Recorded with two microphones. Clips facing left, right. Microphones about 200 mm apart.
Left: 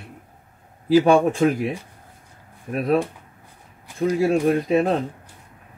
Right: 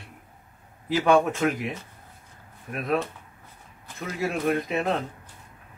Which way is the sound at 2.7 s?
35° left (ahead or behind).